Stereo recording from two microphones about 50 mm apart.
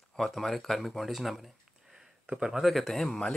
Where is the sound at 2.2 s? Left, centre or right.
Centre.